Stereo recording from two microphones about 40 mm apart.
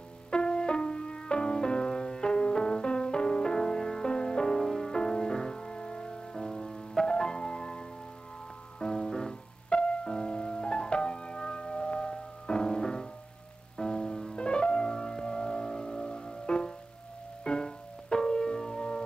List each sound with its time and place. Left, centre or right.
0.3 s music: left
4.6 s music: centre
13.7 s piano: left
17.5 s music: left